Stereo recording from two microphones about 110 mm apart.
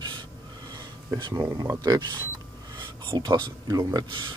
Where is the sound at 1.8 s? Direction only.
40° right (ahead or behind).